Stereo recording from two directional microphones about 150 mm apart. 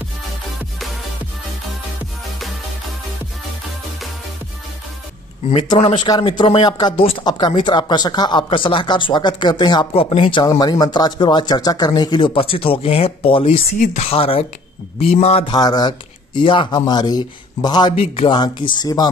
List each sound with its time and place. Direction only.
5.5 s speech: 35° left (ahead or behind)